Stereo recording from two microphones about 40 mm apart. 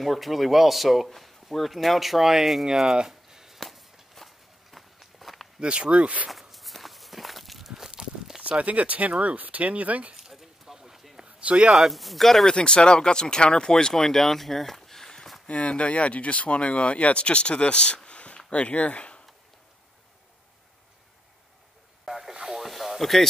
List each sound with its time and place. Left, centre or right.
0.0 s speech: centre
3.1 s a sound: centre
3.5 s walk: centre
5.6 s speech: right
6.3 s walk: centre
8.4 s speech: right
10.1 s a sound: centre
11.3 s speech: right
11.7 s speech: centre
12.4 s speech: left
15.4 s speech: left
22.0 s radio: centre
22.6 s a sound: centre